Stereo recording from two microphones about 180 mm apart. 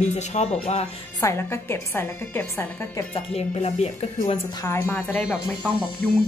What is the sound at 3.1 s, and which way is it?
Speech, 35° left (ahead or behind).